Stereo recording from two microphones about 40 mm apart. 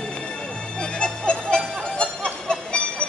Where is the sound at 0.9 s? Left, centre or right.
Left.